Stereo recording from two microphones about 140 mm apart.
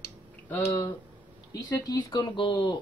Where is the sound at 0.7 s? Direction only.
30° left (ahead or behind).